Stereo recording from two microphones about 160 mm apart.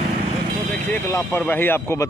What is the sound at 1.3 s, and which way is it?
Speech, 15° left (ahead or behind).